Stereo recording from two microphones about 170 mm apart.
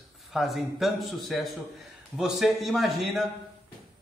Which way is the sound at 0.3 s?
Centre (ahead or behind).